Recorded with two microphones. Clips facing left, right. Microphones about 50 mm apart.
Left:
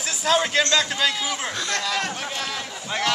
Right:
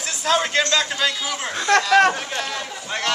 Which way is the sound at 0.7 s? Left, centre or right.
Centre.